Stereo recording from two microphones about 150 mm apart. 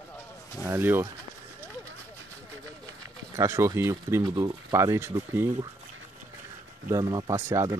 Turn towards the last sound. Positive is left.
turn(degrees=-20)  # may be behind; listen again after turning